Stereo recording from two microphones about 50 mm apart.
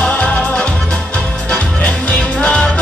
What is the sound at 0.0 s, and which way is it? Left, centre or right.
Music, left.